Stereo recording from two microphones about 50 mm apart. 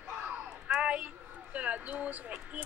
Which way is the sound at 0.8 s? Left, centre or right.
Right.